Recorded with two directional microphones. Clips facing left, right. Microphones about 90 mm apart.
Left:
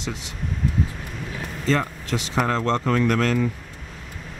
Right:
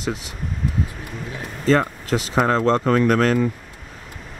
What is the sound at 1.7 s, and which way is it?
Speech, 40° right (ahead or behind).